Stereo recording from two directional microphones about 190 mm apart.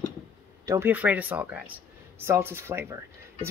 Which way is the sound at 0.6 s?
10° right (ahead or behind).